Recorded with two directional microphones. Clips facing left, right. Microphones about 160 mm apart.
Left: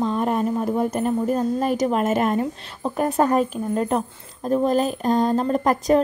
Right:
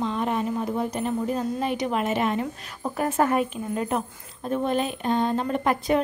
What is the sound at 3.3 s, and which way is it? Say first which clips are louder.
A woman's voice: left 4 dB; 40° left (ahead or behind).